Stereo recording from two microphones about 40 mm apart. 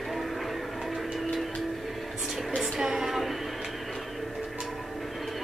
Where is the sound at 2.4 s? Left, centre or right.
Centre.